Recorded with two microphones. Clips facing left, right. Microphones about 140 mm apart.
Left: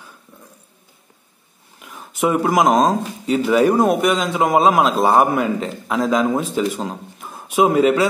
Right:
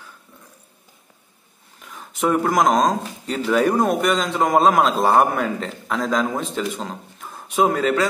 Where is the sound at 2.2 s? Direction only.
10° left (ahead or behind).